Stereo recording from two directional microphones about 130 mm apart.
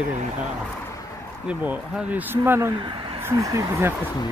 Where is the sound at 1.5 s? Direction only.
15° right (ahead or behind).